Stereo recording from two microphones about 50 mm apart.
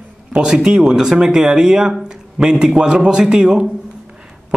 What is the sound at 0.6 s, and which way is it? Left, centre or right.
Speech, centre.